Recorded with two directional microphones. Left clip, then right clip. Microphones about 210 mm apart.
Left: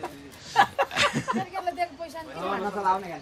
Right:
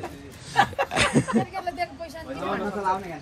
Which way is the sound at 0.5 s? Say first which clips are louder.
Even; 15° left (ahead or behind).